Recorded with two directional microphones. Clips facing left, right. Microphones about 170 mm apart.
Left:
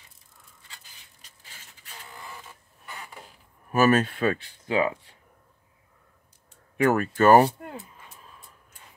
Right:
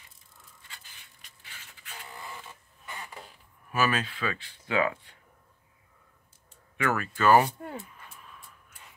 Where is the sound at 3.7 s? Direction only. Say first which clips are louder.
Left 8 dB; 45° left (ahead or behind).